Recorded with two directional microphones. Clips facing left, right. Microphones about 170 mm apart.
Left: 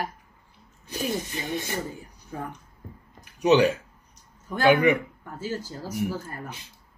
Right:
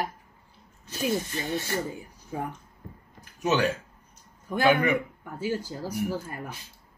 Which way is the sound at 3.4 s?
15° left (ahead or behind).